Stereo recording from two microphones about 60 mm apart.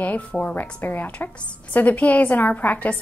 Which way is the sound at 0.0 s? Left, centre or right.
Left.